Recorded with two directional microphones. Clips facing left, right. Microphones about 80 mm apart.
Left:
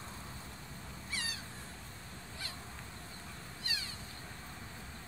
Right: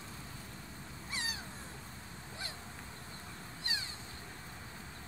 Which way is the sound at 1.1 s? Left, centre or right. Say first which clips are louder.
Right 1 dB; right.